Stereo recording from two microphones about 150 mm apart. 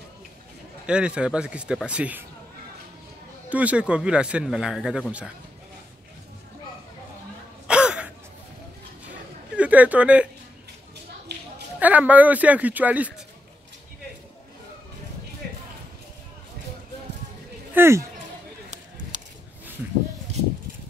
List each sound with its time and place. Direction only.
0.8 s a man's voice: 5° right (ahead or behind)
3.4 s a man's voice: 10° right (ahead or behind)
7.6 s throat clearing: 5° right (ahead or behind)
9.6 s speech: 10° right (ahead or behind)
11.8 s a man's voice: 10° right (ahead or behind)
17.7 s a man's voice: 15° right (ahead or behind)